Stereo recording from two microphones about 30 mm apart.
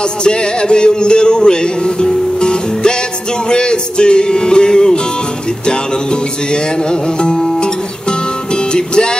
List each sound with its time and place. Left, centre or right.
0.0 s music: left